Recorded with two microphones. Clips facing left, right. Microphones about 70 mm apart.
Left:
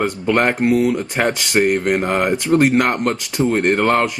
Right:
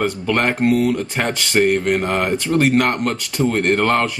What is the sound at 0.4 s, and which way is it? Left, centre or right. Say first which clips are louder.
Speech: left 1 dB; centre.